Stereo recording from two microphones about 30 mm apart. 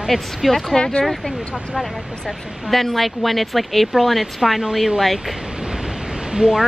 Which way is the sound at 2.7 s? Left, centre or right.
Centre.